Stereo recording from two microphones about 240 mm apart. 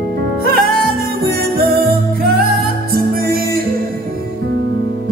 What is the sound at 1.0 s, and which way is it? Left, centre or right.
Music, right.